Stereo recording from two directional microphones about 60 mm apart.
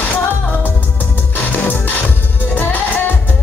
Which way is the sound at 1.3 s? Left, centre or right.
Left.